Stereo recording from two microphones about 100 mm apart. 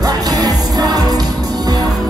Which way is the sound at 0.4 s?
40° right (ahead or behind).